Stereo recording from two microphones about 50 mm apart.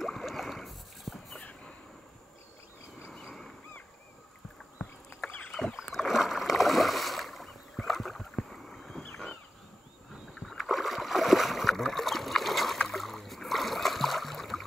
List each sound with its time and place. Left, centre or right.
0.0 s boat: centre
5.2 s rowboat: left
5.9 s rowboat: centre
10.6 s a sound: centre
12.8 s boat: centre